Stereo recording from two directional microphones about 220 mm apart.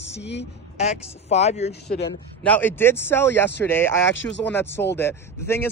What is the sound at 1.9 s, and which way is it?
Speech, 40° left (ahead or behind).